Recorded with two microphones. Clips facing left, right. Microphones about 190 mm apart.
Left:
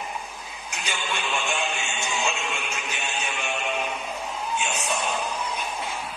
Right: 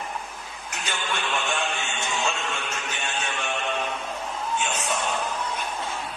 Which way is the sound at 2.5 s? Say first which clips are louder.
Even; 10° left (ahead or behind).